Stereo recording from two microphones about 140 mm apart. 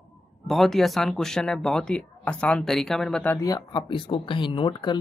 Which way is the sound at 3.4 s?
25° left (ahead or behind).